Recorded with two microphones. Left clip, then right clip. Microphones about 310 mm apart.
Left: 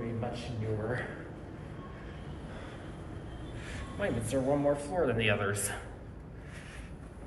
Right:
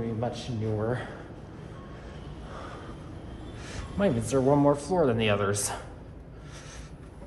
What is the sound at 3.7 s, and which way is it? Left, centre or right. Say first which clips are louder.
A man's voice: right 7 dB; right.